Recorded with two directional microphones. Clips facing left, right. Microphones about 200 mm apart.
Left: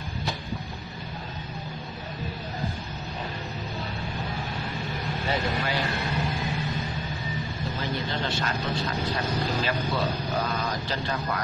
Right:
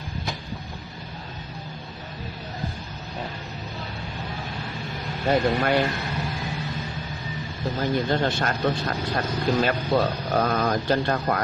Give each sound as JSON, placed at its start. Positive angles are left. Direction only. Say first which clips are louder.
{"t": 5.3, "sound": "speech", "louder": "right 8 dB", "side_deg": -55}
{"t": 7.8, "sound": "speech", "louder": "right 8 dB", "side_deg": -50}